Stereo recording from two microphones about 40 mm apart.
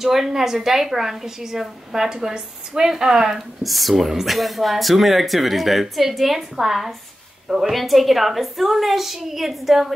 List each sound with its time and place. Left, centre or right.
0.0 s a woman's voice: centre
3.6 s a woman's voice: centre